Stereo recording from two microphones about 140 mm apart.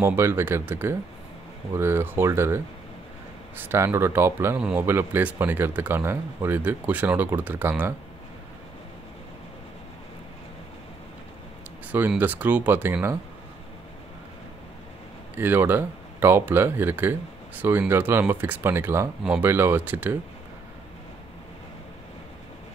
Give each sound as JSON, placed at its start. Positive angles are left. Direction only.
{"t": 0.0, "sound": "speech", "side_deg": -15}
{"t": 12.1, "sound": "speech", "side_deg": -10}
{"t": 15.3, "sound": "speech", "side_deg": -15}
{"t": 19.2, "sound": "speech", "side_deg": -5}